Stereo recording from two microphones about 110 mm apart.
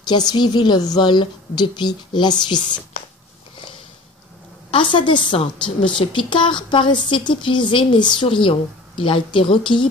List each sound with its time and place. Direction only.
0.0 s a woman's voice: 40° left (ahead or behind)
4.6 s speech: 50° left (ahead or behind)